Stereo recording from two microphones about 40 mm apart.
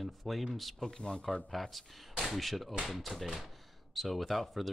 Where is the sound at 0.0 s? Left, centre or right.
Centre.